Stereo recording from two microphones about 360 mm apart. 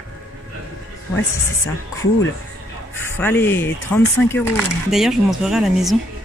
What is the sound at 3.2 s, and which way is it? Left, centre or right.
Speech, centre.